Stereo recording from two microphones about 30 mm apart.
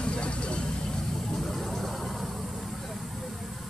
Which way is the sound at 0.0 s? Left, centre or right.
Left.